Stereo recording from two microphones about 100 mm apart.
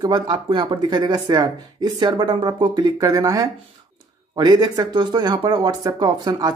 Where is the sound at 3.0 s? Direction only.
35° right (ahead or behind).